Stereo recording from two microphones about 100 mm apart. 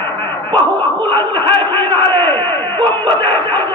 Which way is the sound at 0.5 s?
55° right (ahead or behind).